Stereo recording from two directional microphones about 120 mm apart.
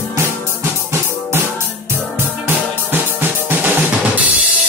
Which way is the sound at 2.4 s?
20° right (ahead or behind).